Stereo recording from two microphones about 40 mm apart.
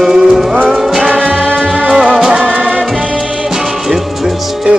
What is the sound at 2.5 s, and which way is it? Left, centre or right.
Music, right.